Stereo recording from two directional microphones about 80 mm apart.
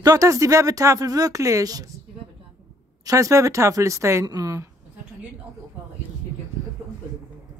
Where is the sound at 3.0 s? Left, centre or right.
Right.